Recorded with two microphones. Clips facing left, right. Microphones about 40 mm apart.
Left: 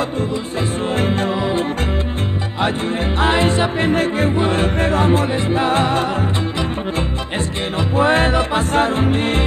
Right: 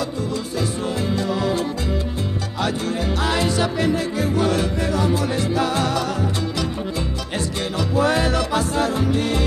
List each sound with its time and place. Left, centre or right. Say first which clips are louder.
0.9 s music: left 6 dB; left
1.3 s music: left 2 dB; left
3.2 s music: left 6 dB; left
7.9 s music: left 4 dB; left